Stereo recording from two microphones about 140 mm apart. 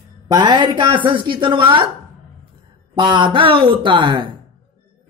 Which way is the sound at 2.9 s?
35° right (ahead or behind).